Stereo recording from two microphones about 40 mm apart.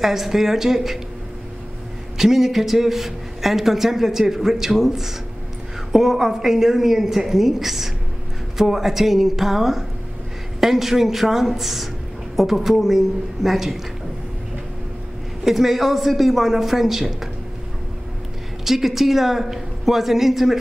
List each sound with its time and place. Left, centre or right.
0.0 s a woman's voice: centre
2.1 s a woman's voice: centre
15.4 s a woman's voice: centre
18.6 s a woman's voice: centre